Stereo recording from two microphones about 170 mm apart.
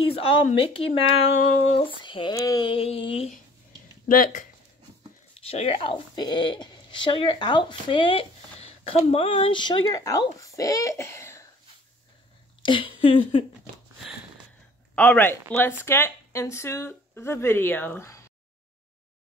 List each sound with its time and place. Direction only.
0.0 s speech: 35° left (ahead or behind)
4.1 s speech: 50° left (ahead or behind)
5.4 s speech: 35° left (ahead or behind); by 11.4 s 15° left (ahead or behind)
12.6 s speech: 30° left (ahead or behind)
15.0 s speech: 10° left (ahead or behind)